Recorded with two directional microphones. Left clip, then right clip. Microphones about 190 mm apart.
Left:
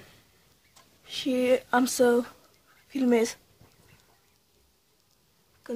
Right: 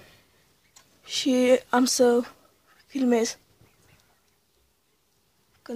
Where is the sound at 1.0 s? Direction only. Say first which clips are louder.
Right 4 dB; 30° right (ahead or behind).